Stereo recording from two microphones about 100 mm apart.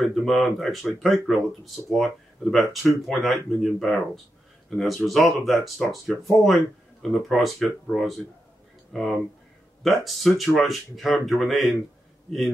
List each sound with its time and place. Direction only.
0.1 s speech: centre (ahead or behind)